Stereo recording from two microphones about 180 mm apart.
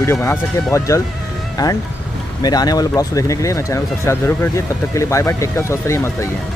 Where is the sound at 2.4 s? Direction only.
20° left (ahead or behind).